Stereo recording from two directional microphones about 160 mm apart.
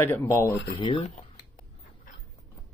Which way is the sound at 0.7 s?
35° left (ahead or behind).